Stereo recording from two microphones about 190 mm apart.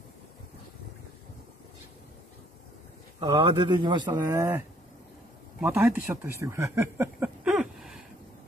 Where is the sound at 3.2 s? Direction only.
25° right (ahead or behind).